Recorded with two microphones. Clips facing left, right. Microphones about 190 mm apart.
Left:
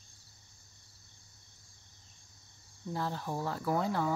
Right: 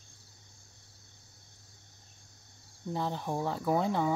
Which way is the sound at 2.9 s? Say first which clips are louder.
Right 3 dB; 20° right (ahead or behind).